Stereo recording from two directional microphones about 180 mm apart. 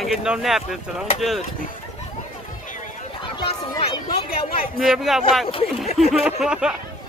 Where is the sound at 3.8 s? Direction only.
35° left (ahead or behind).